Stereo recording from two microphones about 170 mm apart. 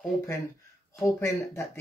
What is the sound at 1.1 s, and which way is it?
Speech, 15° left (ahead or behind).